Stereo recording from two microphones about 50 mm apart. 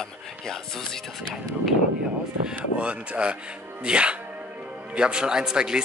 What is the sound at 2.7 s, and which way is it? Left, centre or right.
Speech, right.